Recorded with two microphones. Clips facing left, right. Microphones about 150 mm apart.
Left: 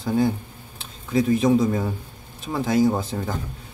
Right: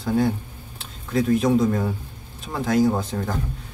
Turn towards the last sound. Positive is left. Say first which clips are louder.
# even
turn(degrees=0)  # may be behind; listen again after turning